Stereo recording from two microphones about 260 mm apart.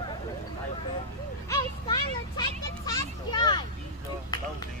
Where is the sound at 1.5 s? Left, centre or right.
Centre.